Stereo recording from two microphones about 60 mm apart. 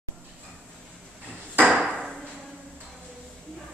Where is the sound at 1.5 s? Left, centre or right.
Right.